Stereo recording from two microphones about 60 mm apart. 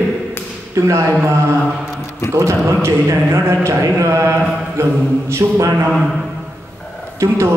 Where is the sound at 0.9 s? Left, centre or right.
Right.